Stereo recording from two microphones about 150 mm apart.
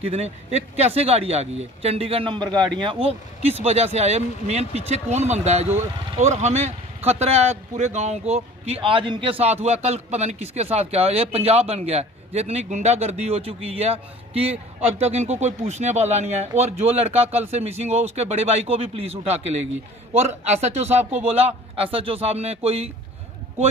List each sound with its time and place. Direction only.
0.1 s a man's voice: 45° right (ahead or behind)